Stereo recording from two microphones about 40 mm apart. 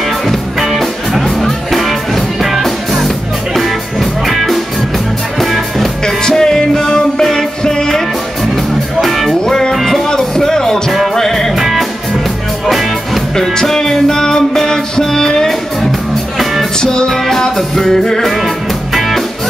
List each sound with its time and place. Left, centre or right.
0.7 s music: centre
6.0 s music: centre
9.0 s music: centre
10.0 s music: centre
11.5 s music: centre
13.6 s music: centre
16.8 s music: centre
17.1 s music: centre